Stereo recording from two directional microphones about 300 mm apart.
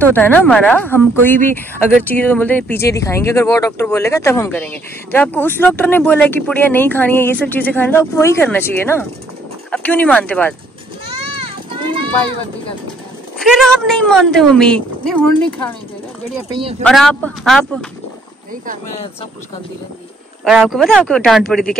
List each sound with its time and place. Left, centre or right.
0.0 s speech: centre
11.1 s children playing: centre
13.4 s a woman's voice: centre
16.8 s a woman's voice: centre
20.4 s a woman's voice: centre